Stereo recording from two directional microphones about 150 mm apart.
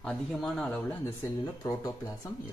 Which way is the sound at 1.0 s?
20° left (ahead or behind).